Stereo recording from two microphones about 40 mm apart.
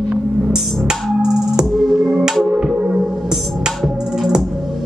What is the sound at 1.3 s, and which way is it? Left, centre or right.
Music, centre.